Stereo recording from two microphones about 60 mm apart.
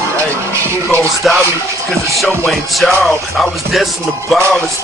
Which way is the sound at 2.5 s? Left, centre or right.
Centre.